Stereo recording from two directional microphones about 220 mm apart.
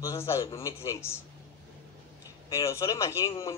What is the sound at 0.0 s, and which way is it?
A man's voice, 15° left (ahead or behind).